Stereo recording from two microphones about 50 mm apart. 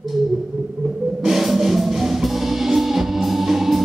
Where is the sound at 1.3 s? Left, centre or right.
Centre.